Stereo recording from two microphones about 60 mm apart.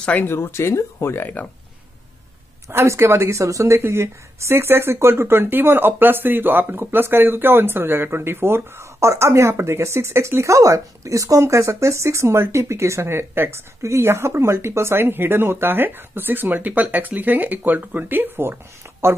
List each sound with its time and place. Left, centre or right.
0.2 s speech: left
2.7 s a woman's voice: right